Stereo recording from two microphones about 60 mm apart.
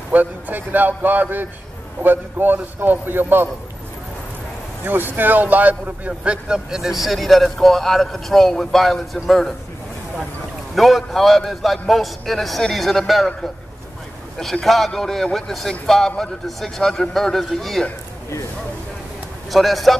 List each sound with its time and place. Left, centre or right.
0.1 s speech: right
4.8 s speech: right; by 9.5 s centre
10.7 s speech: centre
19.5 s speech: centre